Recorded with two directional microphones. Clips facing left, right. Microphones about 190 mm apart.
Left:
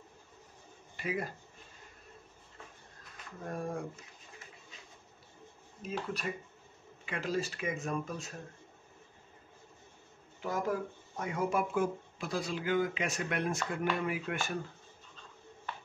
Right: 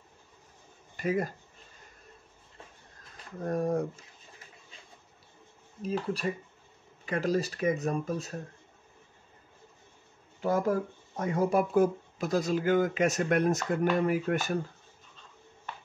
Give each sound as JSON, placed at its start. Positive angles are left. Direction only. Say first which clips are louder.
{"t": 0.9, "sound": "speech", "louder": "right 7 dB", "side_deg": -45}
{"t": 3.4, "sound": "speech", "louder": "right 9 dB", "side_deg": -40}
{"t": 5.8, "sound": "speech", "louder": "right 6 dB", "side_deg": -35}
{"t": 11.1, "sound": "speech", "louder": "right 6 dB", "side_deg": -35}